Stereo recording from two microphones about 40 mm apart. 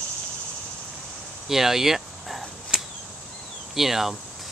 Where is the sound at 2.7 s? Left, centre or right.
Centre.